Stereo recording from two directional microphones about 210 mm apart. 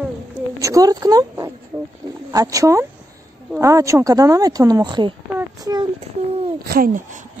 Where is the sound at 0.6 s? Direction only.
15° right (ahead or behind).